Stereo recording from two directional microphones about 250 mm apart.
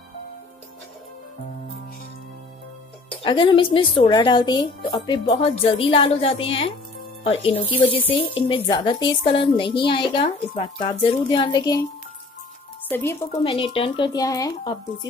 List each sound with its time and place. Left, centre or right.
3.2 s speech: centre
12.8 s speech: centre
13.5 s speech: left